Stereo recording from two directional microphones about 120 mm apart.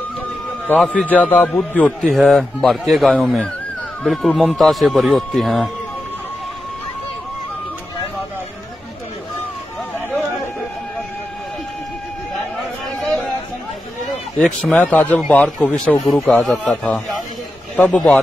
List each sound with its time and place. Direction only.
0.7 s a man's voice: 10° left (ahead or behind)
14.4 s a man's voice: 5° left (ahead or behind)